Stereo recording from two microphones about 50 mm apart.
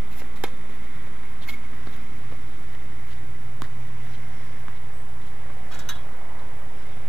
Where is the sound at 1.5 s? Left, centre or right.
Centre.